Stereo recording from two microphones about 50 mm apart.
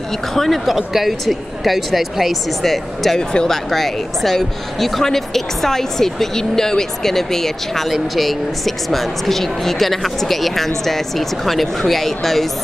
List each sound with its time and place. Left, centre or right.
0.3 s speech: centre
3.2 s speech: centre
3.7 s speech: centre